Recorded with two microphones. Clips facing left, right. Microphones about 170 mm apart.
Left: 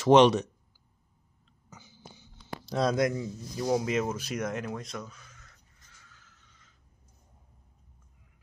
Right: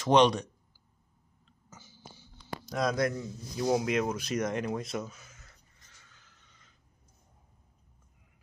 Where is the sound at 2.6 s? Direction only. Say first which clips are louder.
Left 3 dB; 30° left (ahead or behind).